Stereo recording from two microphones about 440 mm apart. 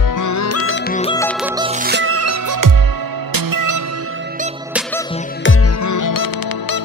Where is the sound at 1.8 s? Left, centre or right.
Right.